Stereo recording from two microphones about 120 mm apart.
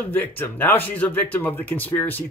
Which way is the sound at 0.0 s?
15° left (ahead or behind).